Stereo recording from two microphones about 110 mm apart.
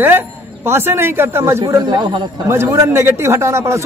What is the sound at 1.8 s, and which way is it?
Speech, 45° right (ahead or behind).